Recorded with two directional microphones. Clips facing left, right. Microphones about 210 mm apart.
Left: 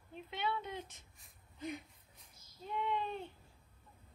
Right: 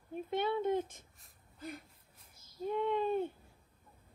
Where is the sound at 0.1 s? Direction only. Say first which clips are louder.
Right 6 dB; 50° right (ahead or behind).